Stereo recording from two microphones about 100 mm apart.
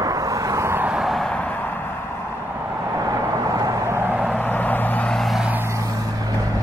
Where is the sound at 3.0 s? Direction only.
35° right (ahead or behind).